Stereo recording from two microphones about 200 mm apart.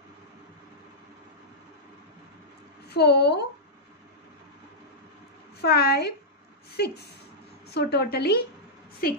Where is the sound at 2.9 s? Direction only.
55° left (ahead or behind).